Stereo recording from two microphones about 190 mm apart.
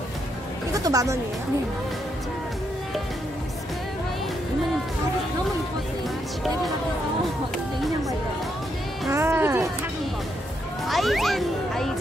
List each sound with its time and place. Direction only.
0.7 s speech: 20° right (ahead or behind)
9.1 s speech: 15° right (ahead or behind)
10.9 s speech: centre (ahead or behind)